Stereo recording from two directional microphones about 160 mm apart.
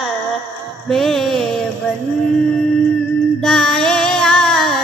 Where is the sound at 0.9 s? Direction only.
Centre (ahead or behind).